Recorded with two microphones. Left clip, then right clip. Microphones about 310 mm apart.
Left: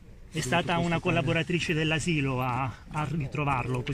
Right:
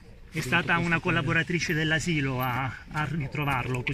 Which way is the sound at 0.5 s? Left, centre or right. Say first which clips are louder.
Right 2 dB; left.